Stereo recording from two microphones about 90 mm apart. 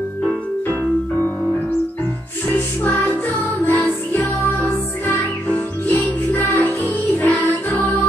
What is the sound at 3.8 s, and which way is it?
Music, 15° left (ahead or behind).